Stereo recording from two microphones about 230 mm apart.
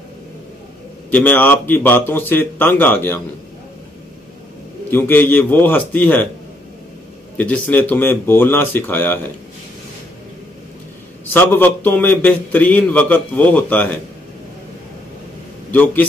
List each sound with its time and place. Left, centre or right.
1.1 s a man's voice: centre
4.9 s a man's voice: centre
7.3 s a man's voice: centre
11.3 s a man's voice: centre
15.7 s a man's voice: centre